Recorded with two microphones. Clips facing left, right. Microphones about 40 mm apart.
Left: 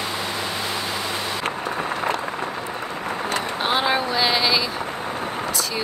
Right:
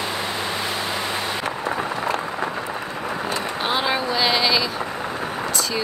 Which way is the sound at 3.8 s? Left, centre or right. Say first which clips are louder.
Even; centre.